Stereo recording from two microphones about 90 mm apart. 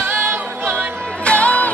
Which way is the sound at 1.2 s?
15° left (ahead or behind).